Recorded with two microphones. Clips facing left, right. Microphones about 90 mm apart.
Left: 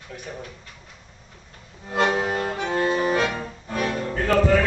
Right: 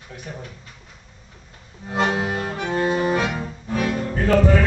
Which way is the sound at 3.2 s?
15° right (ahead or behind).